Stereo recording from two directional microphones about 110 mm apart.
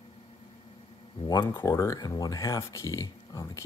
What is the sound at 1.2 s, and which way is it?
Speech, 35° left (ahead or behind).